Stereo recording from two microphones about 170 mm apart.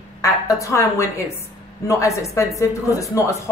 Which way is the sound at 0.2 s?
20° left (ahead or behind).